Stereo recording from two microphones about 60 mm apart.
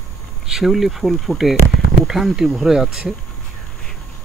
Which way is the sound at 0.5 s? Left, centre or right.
Centre.